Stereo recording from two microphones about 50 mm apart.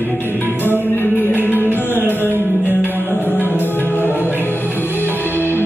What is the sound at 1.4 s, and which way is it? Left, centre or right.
Music, right.